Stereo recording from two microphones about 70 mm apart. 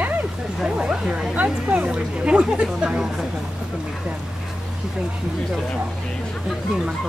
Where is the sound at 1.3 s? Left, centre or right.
Right.